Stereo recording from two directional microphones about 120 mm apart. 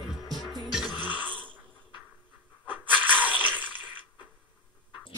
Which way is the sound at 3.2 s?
15° right (ahead or behind).